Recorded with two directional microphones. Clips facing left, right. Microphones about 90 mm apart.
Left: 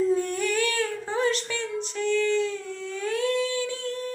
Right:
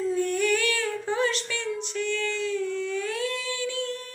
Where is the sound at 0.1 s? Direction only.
35° left (ahead or behind).